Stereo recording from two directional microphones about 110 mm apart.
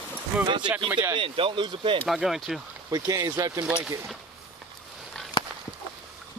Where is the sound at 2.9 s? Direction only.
35° right (ahead or behind).